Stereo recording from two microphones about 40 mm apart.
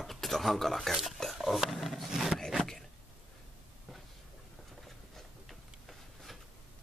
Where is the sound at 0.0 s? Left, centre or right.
Centre.